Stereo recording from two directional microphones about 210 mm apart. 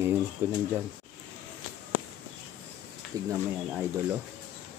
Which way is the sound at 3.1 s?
15° right (ahead or behind).